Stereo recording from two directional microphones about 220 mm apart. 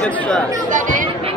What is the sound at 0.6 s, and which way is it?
Speech, 35° right (ahead or behind).